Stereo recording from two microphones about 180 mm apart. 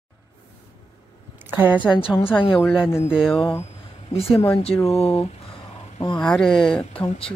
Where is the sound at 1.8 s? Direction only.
30° left (ahead or behind).